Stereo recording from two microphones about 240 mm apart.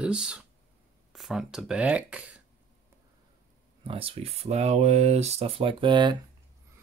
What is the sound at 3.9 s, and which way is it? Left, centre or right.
Speech, right.